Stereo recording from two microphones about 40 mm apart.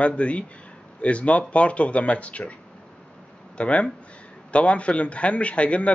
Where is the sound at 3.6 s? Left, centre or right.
Left.